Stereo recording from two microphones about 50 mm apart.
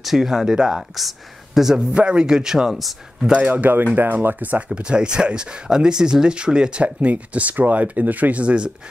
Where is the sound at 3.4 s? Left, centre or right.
Right.